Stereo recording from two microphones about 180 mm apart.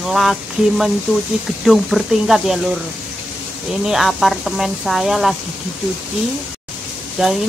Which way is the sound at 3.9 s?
Centre (ahead or behind).